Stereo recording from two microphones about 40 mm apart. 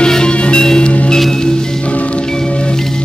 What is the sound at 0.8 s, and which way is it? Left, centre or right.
Music, left.